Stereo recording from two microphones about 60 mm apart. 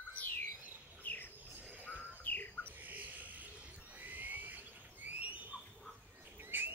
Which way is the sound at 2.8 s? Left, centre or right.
Right.